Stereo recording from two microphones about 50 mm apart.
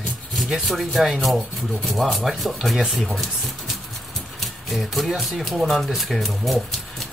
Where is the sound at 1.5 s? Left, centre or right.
Centre.